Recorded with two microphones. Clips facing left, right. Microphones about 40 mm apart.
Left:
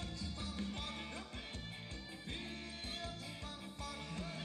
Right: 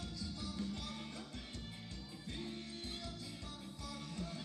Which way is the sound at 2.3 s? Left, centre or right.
Left.